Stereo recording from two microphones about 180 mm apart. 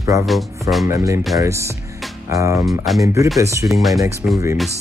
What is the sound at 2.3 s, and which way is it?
Speech, 15° right (ahead or behind).